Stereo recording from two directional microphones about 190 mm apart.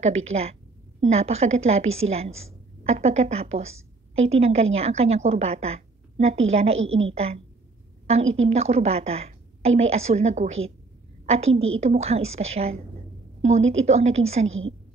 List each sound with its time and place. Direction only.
0.0 s a woman's voice: 35° right (ahead or behind)
6.8 s a woman's voice: 90° right
7.1 s a woman's voice: 30° right (ahead or behind)